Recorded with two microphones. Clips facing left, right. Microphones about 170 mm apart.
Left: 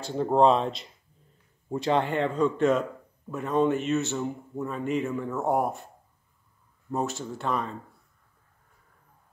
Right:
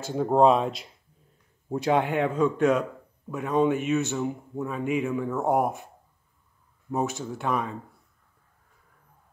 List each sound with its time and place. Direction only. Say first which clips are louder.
0.1 s a man's voice: right 1 dB; 5° right (ahead or behind)
6.9 s a man's voice: right 2 dB; centre (ahead or behind)